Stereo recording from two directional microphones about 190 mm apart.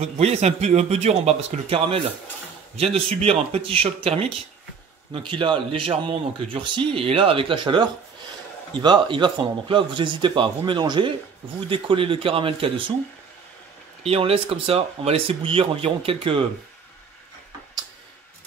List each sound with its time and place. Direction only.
0.0 s speech: 35° right (ahead or behind)
14.0 s speech: 30° right (ahead or behind)